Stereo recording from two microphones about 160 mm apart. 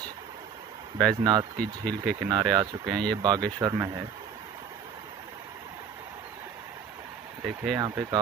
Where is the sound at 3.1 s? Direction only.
25° right (ahead or behind).